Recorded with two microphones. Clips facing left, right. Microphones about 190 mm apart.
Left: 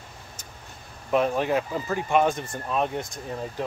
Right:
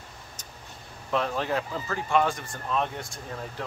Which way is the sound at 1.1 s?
15° left (ahead or behind).